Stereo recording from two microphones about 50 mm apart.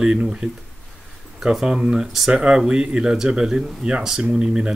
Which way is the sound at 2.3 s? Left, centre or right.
Centre.